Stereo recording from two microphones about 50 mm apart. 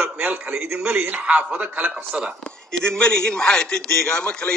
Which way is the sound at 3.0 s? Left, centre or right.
Centre.